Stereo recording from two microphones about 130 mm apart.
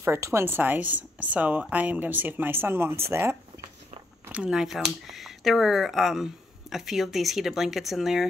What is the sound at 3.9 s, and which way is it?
Walk, 90° right.